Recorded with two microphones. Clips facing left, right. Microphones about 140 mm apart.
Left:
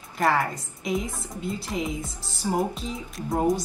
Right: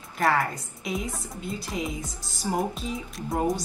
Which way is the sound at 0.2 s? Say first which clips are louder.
Left 1 dB; centre (ahead or behind).